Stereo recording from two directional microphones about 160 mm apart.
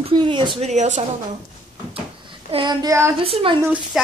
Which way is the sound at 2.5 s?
25° right (ahead or behind).